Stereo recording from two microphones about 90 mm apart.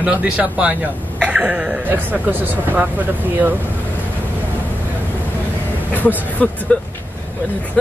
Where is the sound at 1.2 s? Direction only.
15° right (ahead or behind).